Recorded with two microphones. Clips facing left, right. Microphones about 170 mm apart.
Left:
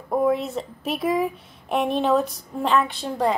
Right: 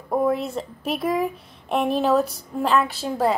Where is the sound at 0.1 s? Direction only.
Centre (ahead or behind).